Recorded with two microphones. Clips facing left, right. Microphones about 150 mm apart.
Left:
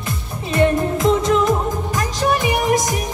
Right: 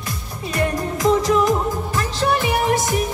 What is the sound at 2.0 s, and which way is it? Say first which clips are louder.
Music: left 1 dB; 15° left (ahead or behind).